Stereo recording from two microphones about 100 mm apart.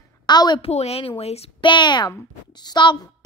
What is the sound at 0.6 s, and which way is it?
Speech, 90° left.